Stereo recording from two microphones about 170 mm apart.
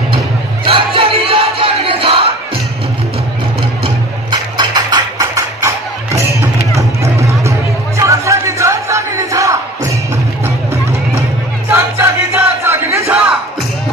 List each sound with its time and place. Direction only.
0.7 s battle cry: 35° right (ahead or behind)
3.8 s a sound: 25° right (ahead or behind)
6.7 s music: 20° right (ahead or behind)
11.7 s music: 15° right (ahead or behind)